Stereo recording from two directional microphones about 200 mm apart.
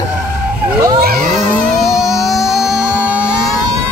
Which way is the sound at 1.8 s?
Centre (ahead or behind).